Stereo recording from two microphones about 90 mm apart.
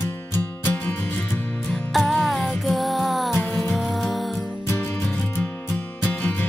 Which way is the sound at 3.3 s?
25° left (ahead or behind).